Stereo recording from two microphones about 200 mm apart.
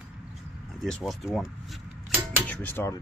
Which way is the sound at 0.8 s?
Centre (ahead or behind).